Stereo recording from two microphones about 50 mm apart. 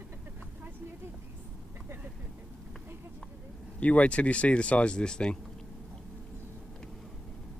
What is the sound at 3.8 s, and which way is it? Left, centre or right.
Speech, left.